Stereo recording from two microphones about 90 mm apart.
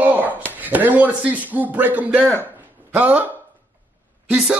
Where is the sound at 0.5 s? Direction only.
20° right (ahead or behind).